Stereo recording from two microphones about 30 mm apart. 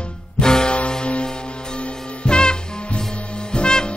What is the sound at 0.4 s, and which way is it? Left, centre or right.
Music, left.